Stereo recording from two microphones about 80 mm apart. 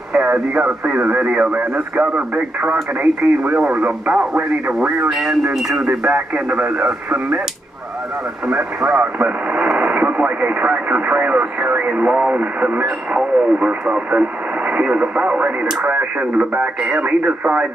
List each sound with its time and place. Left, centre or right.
0.1 s speech: centre
5.9 s speech: centre
8.5 s speech: centre